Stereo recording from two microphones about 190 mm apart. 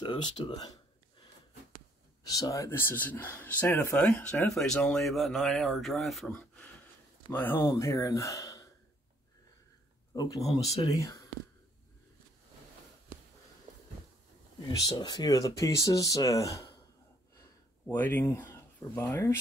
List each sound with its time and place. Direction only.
0.0 s speech: 25° left (ahead or behind)
2.2 s speech: 20° left (ahead or behind)
10.1 s speech: 20° left (ahead or behind)
14.7 s speech: 20° left (ahead or behind)
17.4 s a sound: 10° left (ahead or behind)